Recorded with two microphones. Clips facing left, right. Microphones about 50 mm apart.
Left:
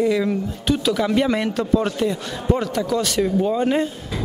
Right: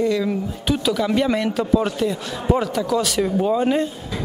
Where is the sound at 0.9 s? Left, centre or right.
Centre.